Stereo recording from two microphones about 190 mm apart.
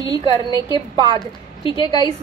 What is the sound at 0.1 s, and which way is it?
A woman's voice, 20° right (ahead or behind).